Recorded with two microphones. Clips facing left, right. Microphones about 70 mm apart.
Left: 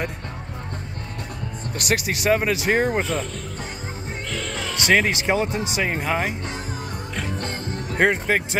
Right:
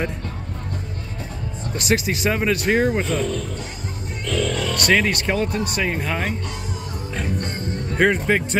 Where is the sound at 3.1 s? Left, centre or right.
Left.